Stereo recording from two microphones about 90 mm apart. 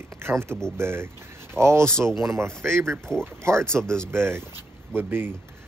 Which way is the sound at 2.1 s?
30° right (ahead or behind).